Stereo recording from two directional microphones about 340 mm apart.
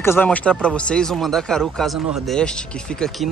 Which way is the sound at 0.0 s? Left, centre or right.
Centre.